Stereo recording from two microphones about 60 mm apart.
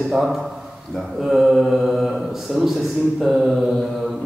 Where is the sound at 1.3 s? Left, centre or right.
Centre.